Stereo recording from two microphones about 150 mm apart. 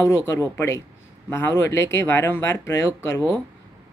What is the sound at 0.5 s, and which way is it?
Speech, 15° left (ahead or behind).